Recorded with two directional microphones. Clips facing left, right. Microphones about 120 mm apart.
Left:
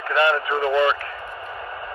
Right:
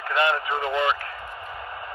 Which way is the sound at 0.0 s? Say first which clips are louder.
Left 3 dB; 45° left (ahead or behind).